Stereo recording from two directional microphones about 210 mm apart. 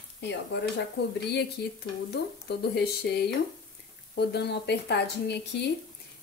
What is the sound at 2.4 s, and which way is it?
A woman's voice, 50° left (ahead or behind).